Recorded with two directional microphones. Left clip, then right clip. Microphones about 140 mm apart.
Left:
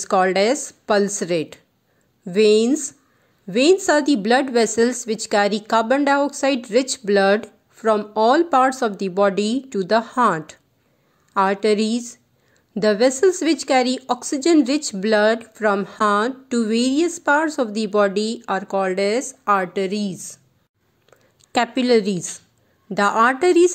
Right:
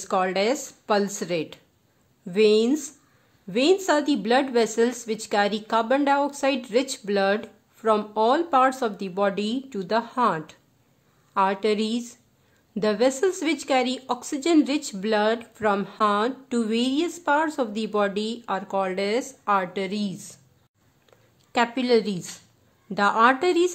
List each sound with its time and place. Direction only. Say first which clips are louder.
0.0 s speech: left 6 dB; 35° left (ahead or behind)
21.5 s speech: left 4 dB; 35° left (ahead or behind)